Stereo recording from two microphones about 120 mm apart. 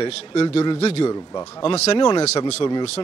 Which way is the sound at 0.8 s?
50° left (ahead or behind).